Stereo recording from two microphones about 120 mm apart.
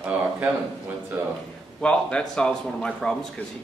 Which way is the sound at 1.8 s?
10° left (ahead or behind).